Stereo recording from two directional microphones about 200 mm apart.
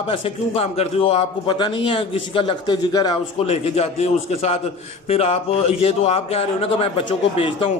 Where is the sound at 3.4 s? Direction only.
30° left (ahead or behind).